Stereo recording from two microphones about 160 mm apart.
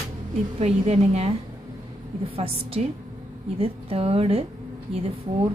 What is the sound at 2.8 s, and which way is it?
A woman's voice, 45° right (ahead or behind).